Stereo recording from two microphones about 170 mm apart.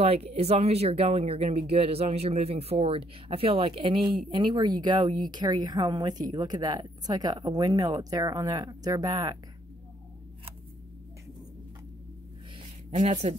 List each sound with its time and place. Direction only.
0.0 s speech: 35° right (ahead or behind)
12.9 s speech: 45° right (ahead or behind)